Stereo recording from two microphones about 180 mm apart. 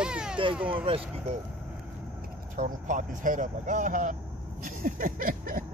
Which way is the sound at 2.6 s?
50° right (ahead or behind).